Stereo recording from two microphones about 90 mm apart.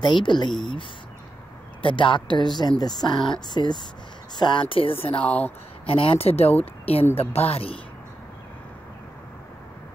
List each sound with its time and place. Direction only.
0.0 s speech: 60° left (ahead or behind)
0.5 s speech: 5° left (ahead or behind)
1.8 s a man's voice: 70° left (ahead or behind)
5.2 s speech: 15° left (ahead or behind)
5.9 s speech: 90° left